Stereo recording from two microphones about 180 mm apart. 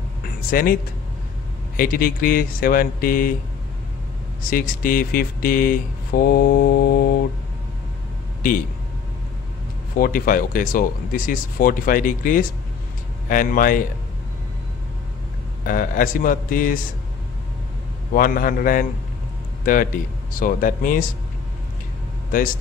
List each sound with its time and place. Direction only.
0.5 s speech: 50° left (ahead or behind)
1.8 s speech: 50° left (ahead or behind)
4.5 s speech: 50° left (ahead or behind)
9.9 s speech: 50° left (ahead or behind)
15.6 s speech: 50° left (ahead or behind)
18.1 s speech: 50° left (ahead or behind)